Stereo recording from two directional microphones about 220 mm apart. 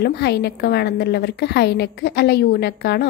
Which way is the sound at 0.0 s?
50° left (ahead or behind).